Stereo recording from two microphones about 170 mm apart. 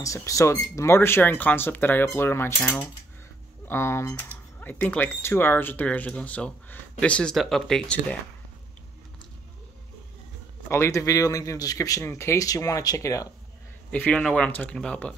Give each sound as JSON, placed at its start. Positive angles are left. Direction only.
{"t": 0.0, "sound": "speech", "side_deg": 20}
{"t": 10.7, "sound": "speech", "side_deg": 15}
{"t": 13.8, "sound": "speech", "side_deg": 10}